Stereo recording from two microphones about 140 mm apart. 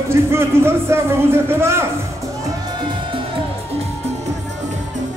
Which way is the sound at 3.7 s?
50° right (ahead or behind).